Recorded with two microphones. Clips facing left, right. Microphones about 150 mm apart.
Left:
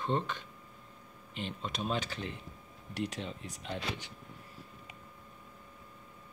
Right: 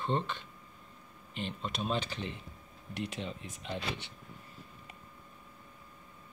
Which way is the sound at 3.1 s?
Centre (ahead or behind).